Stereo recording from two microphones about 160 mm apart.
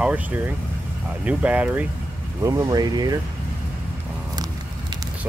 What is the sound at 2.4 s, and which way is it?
Speech, 25° right (ahead or behind).